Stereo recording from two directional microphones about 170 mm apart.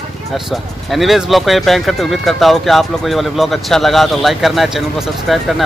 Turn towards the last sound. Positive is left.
turn(degrees=0)  # may be behind; listen again after turning